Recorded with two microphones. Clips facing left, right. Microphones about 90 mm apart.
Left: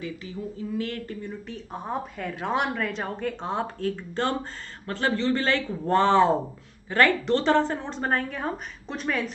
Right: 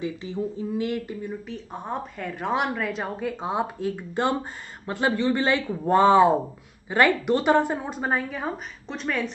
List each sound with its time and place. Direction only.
0.0 s speech: 20° right (ahead or behind)
1.5 s a woman's voice: centre (ahead or behind)